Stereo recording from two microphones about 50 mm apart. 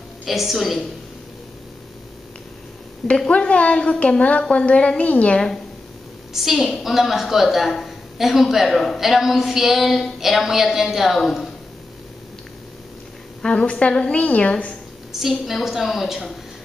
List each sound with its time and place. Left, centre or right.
0.2 s speech: centre
3.3 s a woman's voice: left
5.3 s a woman's voice: centre
6.3 s a woman's voice: centre
11.1 s speech: centre
13.4 s a woman's voice: centre
15.1 s speech: centre